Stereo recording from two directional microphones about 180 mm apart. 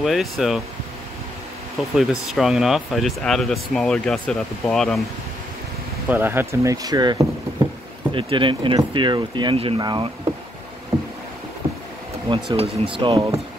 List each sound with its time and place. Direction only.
0.0 s speech: centre (ahead or behind)
2.0 s speech: centre (ahead or behind)
6.0 s speech: 10° right (ahead or behind)
10.9 s a sound: centre (ahead or behind)
12.3 s speech: 30° right (ahead or behind)